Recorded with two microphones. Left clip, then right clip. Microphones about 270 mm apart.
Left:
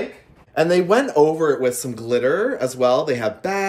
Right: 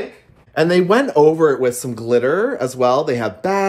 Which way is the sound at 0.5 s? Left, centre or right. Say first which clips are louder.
Right 2 dB; right.